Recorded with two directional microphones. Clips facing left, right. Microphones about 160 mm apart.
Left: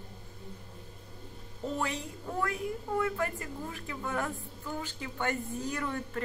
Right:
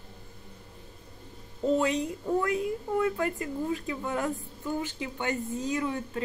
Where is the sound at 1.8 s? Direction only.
20° right (ahead or behind).